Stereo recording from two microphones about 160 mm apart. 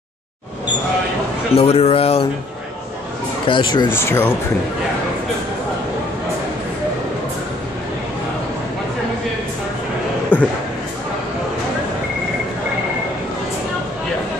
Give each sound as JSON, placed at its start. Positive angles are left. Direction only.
{"t": 1.5, "sound": "a man's voice", "side_deg": 40}
{"t": 3.4, "sound": "speech", "side_deg": 30}
{"t": 3.9, "sound": "speech", "side_deg": 15}
{"t": 10.3, "sound": "a sound", "side_deg": 10}